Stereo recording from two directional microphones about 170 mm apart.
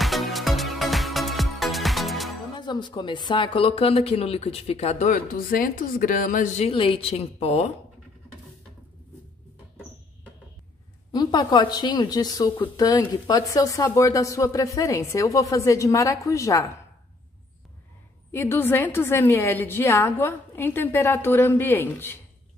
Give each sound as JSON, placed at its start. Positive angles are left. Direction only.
{"t": 0.0, "sound": "music", "side_deg": 0}
{"t": 2.5, "sound": "speech", "side_deg": 25}
{"t": 11.1, "sound": "a woman's voice", "side_deg": 25}
{"t": 18.3, "sound": "a woman's voice", "side_deg": 15}